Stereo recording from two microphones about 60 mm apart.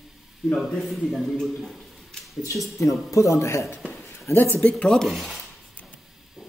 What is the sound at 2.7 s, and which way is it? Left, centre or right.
Speech, left.